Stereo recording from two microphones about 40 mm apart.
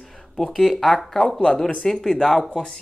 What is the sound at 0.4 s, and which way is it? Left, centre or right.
Speech, centre.